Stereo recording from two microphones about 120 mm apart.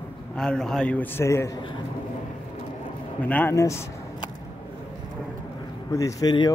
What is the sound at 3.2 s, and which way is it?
Speech, 15° left (ahead or behind).